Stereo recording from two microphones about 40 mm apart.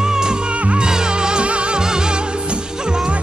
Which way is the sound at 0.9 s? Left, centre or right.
Centre.